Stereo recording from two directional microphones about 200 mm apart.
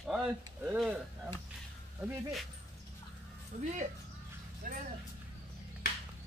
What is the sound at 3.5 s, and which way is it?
Speech, 35° right (ahead or behind).